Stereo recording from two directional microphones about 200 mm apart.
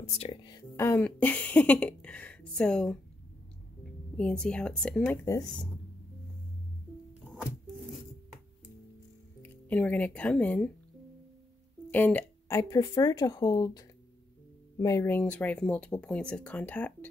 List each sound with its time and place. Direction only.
0.0 s speech: 30° left (ahead or behind); by 3.0 s 5° left (ahead or behind)
4.2 s speech: 5° left (ahead or behind)
9.4 s speech: 5° left (ahead or behind)
11.9 s speech: 10° left (ahead or behind)